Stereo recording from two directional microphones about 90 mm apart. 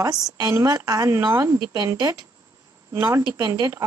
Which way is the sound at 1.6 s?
45° right (ahead or behind).